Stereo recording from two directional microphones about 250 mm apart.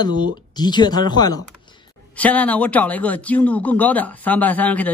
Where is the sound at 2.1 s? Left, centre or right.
Centre.